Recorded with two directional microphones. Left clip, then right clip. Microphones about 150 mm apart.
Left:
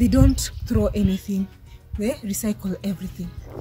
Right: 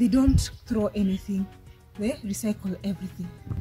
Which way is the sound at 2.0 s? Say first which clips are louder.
Left 4 dB; 35° left (ahead or behind).